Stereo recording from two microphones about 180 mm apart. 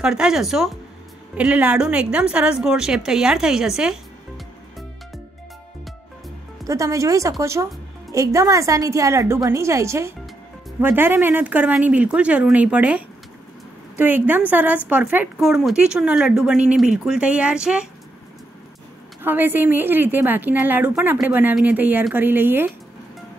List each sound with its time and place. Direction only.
0.0 s speech: 5° right (ahead or behind)
6.7 s a woman's voice: 15° right (ahead or behind)
19.2 s a woman's voice: 10° right (ahead or behind)